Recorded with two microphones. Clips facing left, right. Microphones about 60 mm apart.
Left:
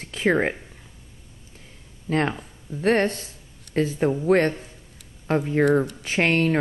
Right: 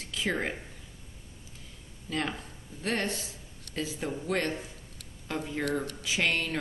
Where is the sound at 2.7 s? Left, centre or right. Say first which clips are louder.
Left 11 dB; left.